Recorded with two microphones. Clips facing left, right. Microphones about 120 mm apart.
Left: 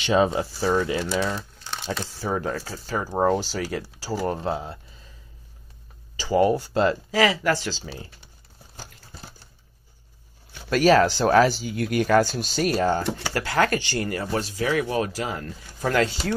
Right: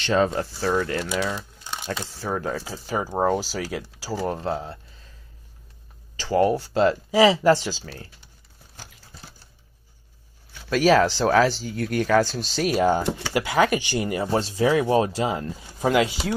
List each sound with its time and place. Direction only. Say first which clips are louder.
0.0 s speech: left 1 dB; 15° left (ahead or behind)
6.1 s speech: even; 5° left (ahead or behind)
7.1 s speech: right 5 dB; 20° right (ahead or behind)
10.7 s speech: even; centre (ahead or behind); by 16.0 s 25° right (ahead or behind)
16.3 s speech: even; 5° right (ahead or behind)